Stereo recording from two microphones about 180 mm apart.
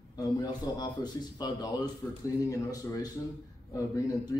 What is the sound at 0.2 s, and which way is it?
Speech, 20° left (ahead or behind).